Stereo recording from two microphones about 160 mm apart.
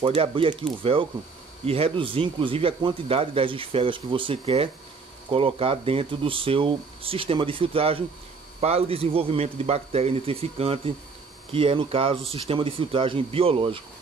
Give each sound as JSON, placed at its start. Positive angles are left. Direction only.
{"t": 0.0, "sound": "speech", "side_deg": -35}
{"t": 1.7, "sound": "speech", "side_deg": -35}